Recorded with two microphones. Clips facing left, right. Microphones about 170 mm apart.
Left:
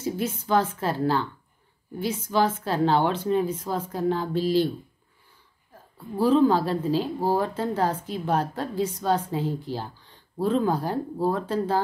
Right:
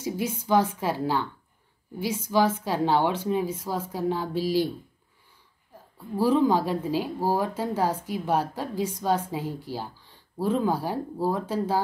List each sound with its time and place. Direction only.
0.0 s a woman's voice: 10° right (ahead or behind)
6.1 s a woman's voice: 10° right (ahead or behind)